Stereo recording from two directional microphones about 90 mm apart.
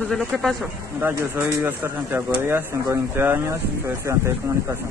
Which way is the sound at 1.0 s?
30° right (ahead or behind).